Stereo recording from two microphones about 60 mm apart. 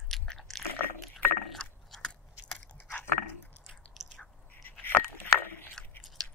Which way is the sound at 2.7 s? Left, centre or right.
Left.